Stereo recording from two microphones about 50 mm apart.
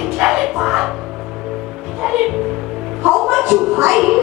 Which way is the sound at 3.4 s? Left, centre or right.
Right.